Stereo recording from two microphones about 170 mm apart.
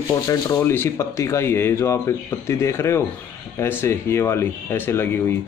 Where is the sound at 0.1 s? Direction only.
20° left (ahead or behind).